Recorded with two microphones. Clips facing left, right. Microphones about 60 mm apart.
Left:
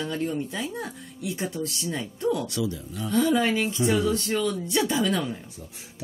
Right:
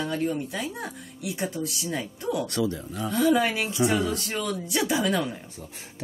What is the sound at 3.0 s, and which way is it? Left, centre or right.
Speech, centre.